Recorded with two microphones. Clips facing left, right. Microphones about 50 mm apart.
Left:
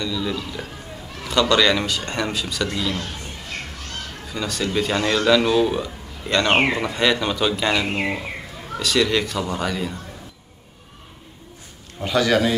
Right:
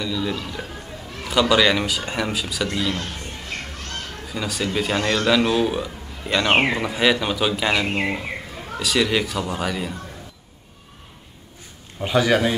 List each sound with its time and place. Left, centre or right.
0.0 s a man's voice: centre
4.3 s a man's voice: centre
12.0 s a man's voice: centre